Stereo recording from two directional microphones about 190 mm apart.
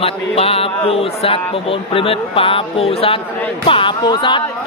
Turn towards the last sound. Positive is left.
turn(degrees=25)  # may be behind; listen again after turning